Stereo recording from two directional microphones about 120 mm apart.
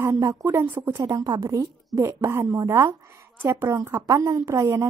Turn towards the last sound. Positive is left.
turn(degrees=-25)  # may be behind; listen again after turning